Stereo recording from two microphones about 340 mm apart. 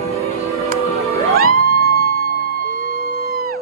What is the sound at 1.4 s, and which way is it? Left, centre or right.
Music, right.